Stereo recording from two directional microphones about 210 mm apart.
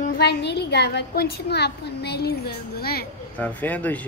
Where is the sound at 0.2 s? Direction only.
55° left (ahead or behind).